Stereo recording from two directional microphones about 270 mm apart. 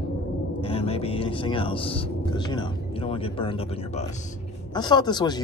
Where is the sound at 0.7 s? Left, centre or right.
Left.